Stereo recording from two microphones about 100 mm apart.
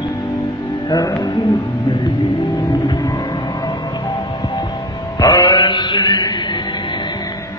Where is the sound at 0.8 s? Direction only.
40° left (ahead or behind).